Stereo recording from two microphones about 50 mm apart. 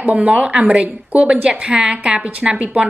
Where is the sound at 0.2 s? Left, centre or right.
Right.